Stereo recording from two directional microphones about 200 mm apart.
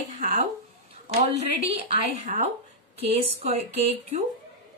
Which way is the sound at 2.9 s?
30° right (ahead or behind).